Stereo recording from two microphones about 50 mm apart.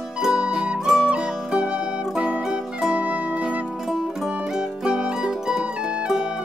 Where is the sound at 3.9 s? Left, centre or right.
Centre.